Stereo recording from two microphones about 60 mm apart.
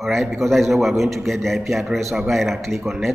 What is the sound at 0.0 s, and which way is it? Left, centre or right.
A man's voice, centre.